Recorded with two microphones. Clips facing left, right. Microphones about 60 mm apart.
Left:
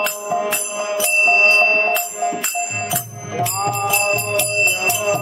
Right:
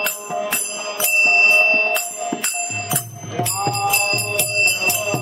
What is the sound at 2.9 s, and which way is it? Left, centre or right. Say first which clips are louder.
Music: left 1 dB; centre.